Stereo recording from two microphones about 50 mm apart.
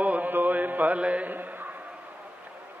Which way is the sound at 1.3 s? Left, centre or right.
Right.